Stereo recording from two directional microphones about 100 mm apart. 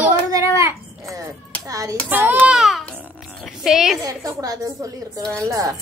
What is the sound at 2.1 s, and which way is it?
Speech, 20° right (ahead or behind).